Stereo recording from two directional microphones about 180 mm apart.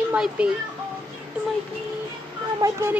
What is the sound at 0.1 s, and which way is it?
Speech, 5° right (ahead or behind).